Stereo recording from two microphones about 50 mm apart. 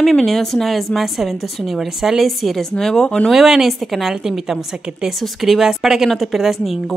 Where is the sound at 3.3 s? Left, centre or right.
Centre.